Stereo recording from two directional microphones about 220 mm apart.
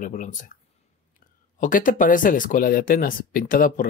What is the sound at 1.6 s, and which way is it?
A man's voice, 35° left (ahead or behind).